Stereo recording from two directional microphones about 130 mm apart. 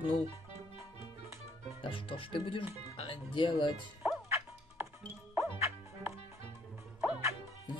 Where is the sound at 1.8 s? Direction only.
40° left (ahead or behind).